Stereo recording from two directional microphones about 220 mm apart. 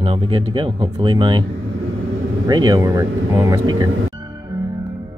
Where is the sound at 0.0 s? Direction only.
25° right (ahead or behind).